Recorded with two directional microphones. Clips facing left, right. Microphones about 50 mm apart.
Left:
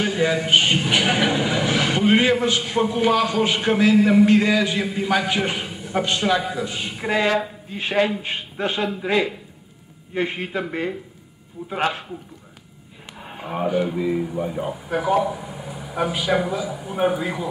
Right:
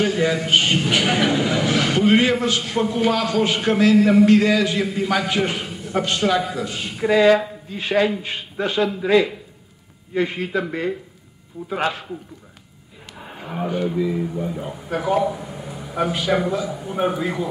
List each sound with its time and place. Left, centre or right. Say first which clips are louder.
0.0 s a man's voice: right 1 dB; centre
7.0 s a man's voice: right 6 dB; left
13.7 s a man's voice: even; centre
14.9 s a man's voice: right 1 dB; centre